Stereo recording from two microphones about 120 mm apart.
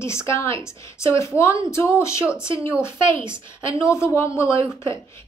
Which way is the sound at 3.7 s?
25° left (ahead or behind).